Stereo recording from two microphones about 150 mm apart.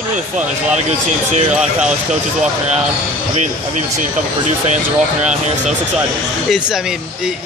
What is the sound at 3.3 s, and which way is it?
Speech, 55° right (ahead or behind).